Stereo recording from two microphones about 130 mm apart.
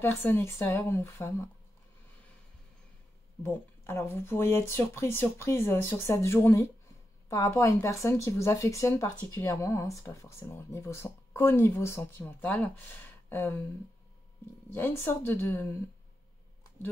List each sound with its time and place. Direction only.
0.0 s a woman's voice: 15° left (ahead or behind)
3.4 s a woman's voice: 20° left (ahead or behind)
14.7 s speech: 15° left (ahead or behind)